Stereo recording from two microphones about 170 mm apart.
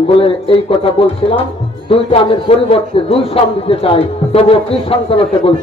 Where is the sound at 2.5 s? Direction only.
35° left (ahead or behind).